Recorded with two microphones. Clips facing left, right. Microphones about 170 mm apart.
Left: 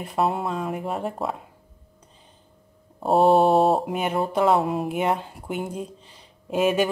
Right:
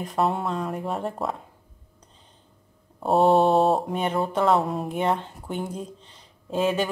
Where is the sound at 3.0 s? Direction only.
Centre (ahead or behind).